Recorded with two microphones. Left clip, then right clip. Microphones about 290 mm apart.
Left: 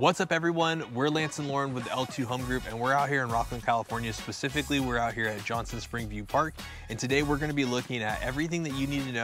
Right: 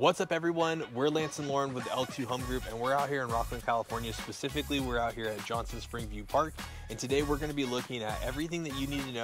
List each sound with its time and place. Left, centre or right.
0.0 s speech: left